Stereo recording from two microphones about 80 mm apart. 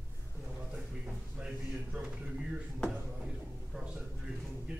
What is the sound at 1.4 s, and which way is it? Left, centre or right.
Speech, centre.